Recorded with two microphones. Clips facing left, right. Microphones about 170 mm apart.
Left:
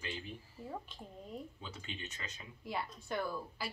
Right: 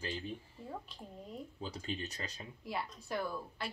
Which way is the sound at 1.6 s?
35° right (ahead or behind).